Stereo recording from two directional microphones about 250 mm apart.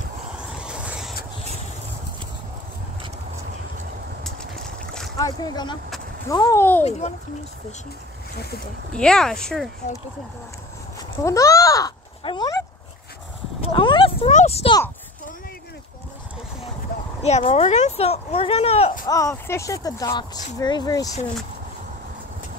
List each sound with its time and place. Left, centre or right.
0.6 s a sound: centre
5.2 s speech: centre
6.8 s speech: left
8.9 s speech: centre
11.2 s a sound: centre
17.2 s speech: left
19.0 s speech: centre